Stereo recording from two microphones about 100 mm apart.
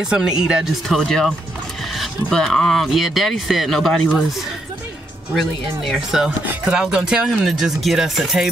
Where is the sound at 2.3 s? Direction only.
5° left (ahead or behind).